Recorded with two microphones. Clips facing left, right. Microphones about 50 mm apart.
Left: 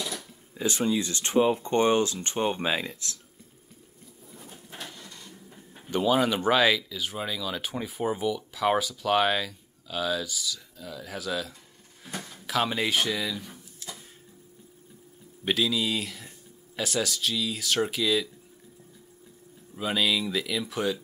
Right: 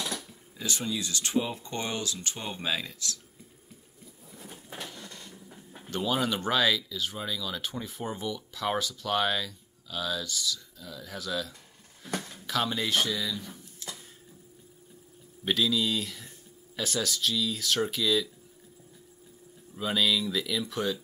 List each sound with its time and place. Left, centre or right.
0.6 s speech: left
5.2 s vehicle: centre
5.9 s speech: centre
15.4 s speech: centre
19.7 s speech: centre